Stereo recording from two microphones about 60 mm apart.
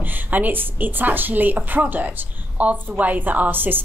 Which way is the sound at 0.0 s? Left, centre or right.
Right.